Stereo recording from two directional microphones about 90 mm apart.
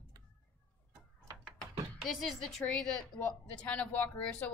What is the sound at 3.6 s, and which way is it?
Speech, 15° left (ahead or behind).